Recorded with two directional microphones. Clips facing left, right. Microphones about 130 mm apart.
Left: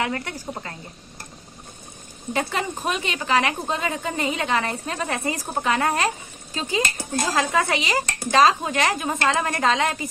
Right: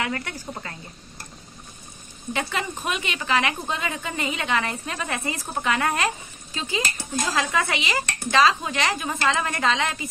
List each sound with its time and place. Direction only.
0.0 s a woman's voice: 30° left (ahead or behind)
2.3 s a woman's voice: 40° left (ahead or behind)